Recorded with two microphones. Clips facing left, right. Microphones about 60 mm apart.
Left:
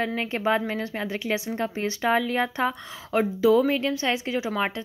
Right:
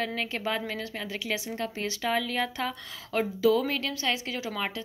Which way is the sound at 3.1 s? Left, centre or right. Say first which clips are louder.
Left 4 dB; centre.